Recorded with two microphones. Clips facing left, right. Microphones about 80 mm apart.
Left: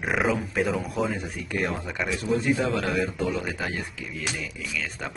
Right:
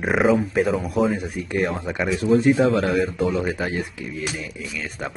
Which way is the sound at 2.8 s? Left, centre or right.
Centre.